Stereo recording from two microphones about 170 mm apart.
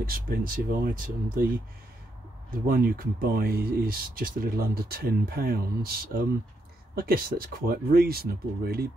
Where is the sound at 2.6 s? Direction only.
60° right (ahead or behind).